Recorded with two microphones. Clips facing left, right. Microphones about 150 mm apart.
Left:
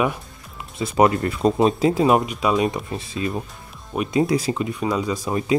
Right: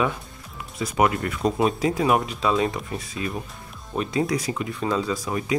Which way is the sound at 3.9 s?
15° left (ahead or behind).